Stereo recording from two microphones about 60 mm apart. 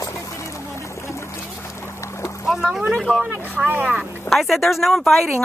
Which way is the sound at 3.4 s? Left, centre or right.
Right.